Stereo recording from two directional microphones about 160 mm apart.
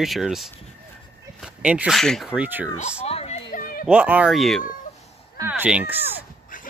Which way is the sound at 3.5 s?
60° left (ahead or behind).